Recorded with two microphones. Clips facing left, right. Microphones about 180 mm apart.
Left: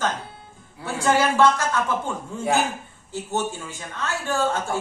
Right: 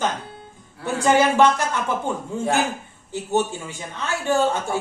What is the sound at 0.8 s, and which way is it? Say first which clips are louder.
Speech: right 3 dB; 20° right (ahead or behind).